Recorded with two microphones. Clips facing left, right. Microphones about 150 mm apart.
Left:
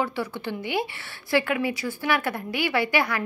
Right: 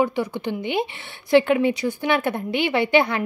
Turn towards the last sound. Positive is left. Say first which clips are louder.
# right 5 dB
turn(degrees=-25)  # may be behind; listen again after turning